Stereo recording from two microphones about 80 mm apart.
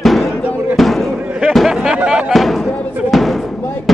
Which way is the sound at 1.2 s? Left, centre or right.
Centre.